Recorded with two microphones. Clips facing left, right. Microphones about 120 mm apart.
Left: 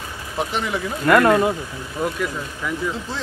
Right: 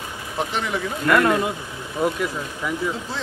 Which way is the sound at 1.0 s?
40° left (ahead or behind).